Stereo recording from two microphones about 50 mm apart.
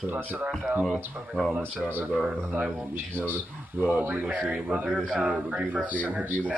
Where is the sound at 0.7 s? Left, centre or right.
Right.